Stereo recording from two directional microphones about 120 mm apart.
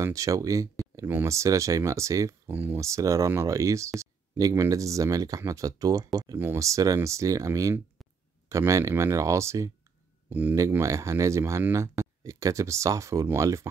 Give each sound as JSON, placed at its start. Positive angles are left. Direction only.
{"t": 0.0, "sound": "speech", "side_deg": -25}